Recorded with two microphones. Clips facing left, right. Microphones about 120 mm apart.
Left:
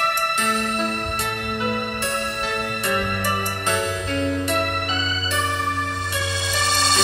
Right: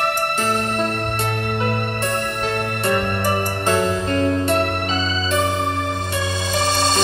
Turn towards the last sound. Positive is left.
turn(degrees=-30)  # may be behind; listen again after turning